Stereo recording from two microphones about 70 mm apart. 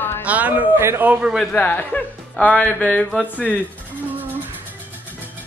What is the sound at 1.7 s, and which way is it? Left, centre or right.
A woman's voice, left.